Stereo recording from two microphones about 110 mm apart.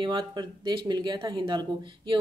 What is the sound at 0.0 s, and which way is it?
Speech, 40° right (ahead or behind).